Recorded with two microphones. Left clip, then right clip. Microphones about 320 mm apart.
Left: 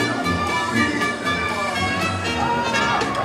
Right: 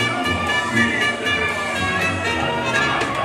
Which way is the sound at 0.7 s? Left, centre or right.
Left.